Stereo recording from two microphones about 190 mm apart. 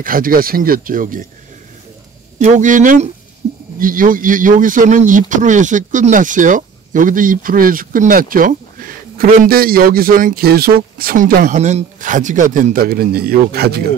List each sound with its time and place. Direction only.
0.0 s a man's voice: 50° right (ahead or behind)
2.3 s speech: 40° right (ahead or behind)
3.4 s a sound: 35° right (ahead or behind)
3.8 s a man's voice: 45° right (ahead or behind)